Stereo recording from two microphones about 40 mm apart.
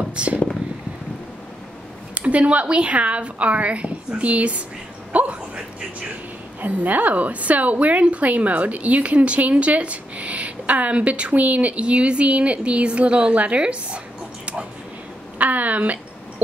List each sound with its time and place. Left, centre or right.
0.0 s a woman's voice: right
2.1 s a woman's voice: right
6.6 s a woman's voice: right
15.3 s a woman's voice: right